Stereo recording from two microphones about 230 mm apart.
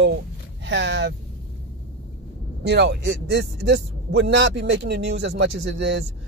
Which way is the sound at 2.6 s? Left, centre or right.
Right.